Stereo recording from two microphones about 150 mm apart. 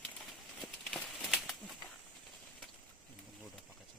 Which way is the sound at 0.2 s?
Centre (ahead or behind).